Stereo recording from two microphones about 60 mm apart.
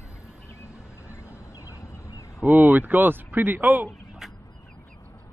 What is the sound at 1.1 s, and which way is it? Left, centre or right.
Fowl, left.